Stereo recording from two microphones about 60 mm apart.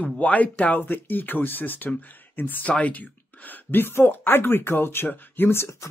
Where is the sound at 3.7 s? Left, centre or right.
Left.